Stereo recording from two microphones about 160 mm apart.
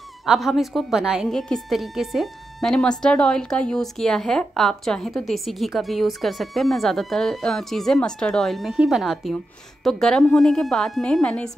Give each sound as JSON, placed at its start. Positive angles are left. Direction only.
{"t": 0.2, "sound": "a woman's voice", "side_deg": 0}